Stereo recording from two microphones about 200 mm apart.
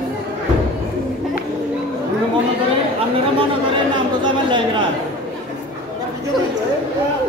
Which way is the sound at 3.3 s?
25° right (ahead or behind).